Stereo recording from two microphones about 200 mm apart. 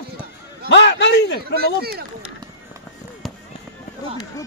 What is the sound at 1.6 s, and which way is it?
Speech, 50° right (ahead or behind).